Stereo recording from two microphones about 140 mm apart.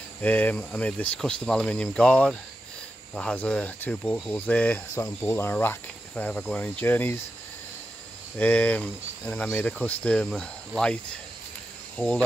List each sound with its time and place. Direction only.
0.2 s speech: 10° left (ahead or behind)
8.4 s speech: 10° left (ahead or behind)
12.0 s speech: 15° left (ahead or behind)